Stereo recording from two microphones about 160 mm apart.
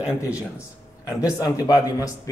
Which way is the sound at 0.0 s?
5° right (ahead or behind).